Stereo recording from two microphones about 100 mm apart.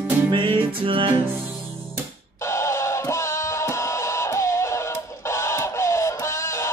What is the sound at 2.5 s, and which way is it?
Music, 30° left (ahead or behind).